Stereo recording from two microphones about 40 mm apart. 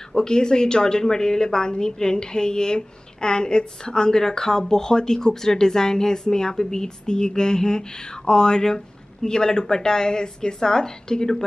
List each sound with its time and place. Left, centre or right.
0.1 s a woman's voice: centre